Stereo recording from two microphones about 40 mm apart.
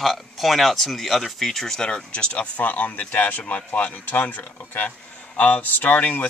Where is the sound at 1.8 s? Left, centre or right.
Left.